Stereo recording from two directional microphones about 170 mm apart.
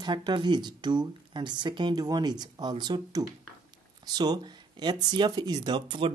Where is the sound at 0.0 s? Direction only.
25° right (ahead or behind).